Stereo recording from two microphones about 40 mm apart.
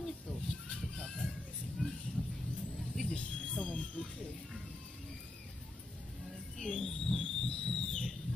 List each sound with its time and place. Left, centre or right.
0.0 s chicken: centre
1.0 s children playing: centre
1.8 s a sound: centre
2.2 s vehicle: centre
2.9 s vehicle: centre
3.3 s music: left
6.6 s a sound: centre